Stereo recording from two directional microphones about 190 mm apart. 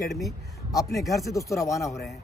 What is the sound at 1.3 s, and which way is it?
Speech, 15° left (ahead or behind).